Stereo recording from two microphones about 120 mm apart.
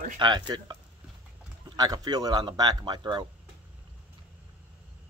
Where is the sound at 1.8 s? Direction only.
35° right (ahead or behind).